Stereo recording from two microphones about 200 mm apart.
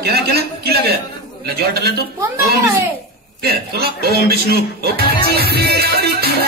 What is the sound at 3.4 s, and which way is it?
A man's voice, 50° right (ahead or behind).